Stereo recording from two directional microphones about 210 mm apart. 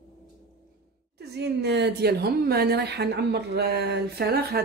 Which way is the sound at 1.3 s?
50° right (ahead or behind).